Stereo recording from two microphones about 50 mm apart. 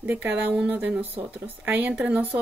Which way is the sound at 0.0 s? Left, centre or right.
Right.